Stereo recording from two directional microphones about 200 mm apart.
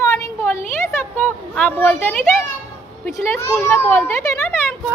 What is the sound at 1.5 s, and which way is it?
A child's voice, 5° left (ahead or behind).